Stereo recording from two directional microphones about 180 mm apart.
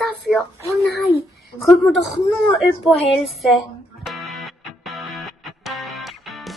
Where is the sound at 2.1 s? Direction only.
Centre (ahead or behind).